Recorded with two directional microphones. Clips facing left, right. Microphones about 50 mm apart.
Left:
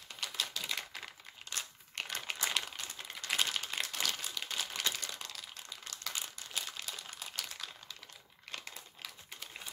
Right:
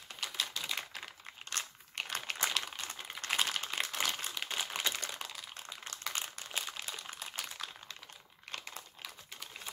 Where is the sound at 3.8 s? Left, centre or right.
Right.